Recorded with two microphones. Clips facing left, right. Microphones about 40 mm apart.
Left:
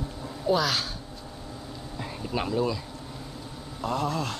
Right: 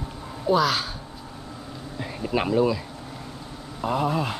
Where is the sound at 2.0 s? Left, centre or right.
Right.